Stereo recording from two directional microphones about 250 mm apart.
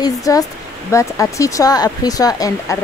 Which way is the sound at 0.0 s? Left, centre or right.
Centre.